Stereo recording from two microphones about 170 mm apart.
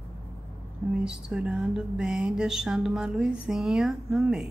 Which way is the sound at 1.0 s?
5° right (ahead or behind).